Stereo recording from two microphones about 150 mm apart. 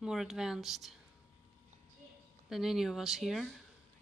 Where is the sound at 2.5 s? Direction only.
Centre (ahead or behind).